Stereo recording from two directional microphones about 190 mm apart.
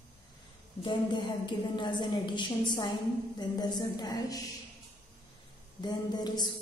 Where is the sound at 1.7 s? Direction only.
25° left (ahead or behind).